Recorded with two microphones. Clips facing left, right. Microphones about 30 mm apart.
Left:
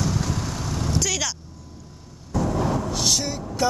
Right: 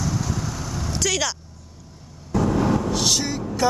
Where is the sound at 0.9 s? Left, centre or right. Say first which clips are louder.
Right 3 dB; centre.